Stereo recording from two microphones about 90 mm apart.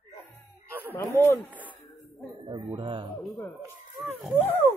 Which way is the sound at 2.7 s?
70° right (ahead or behind).